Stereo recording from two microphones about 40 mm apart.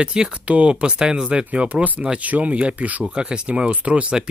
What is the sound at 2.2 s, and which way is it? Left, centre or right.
Speech, right.